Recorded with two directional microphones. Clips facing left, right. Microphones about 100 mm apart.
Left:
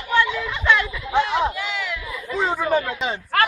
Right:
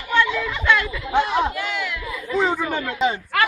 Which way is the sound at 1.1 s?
10° right (ahead or behind).